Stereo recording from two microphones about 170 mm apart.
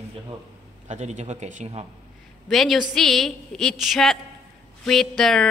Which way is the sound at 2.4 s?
Centre (ahead or behind).